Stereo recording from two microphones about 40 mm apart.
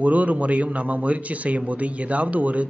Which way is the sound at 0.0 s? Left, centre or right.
Right.